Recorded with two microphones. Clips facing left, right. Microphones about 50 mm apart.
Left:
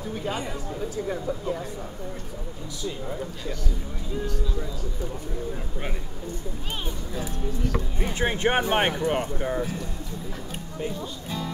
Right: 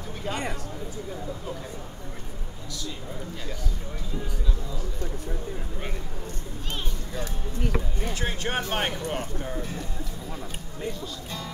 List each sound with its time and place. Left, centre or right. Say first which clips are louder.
0.1 s speech: left 2 dB; centre
7.1 s speech: even; centre
8.0 s speech: left 6 dB; left
11.2 s music: left 4 dB; centre